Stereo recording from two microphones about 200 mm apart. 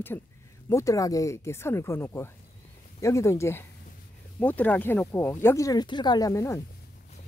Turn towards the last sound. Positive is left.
turn(degrees=15)  # may be behind; listen again after turning